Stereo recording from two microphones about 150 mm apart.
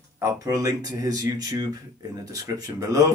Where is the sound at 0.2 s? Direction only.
20° right (ahead or behind).